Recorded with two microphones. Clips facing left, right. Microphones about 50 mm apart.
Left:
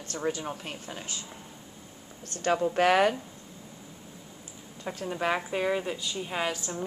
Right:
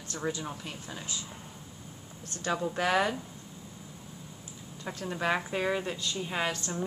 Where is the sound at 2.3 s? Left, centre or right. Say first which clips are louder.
Left 5 dB; left.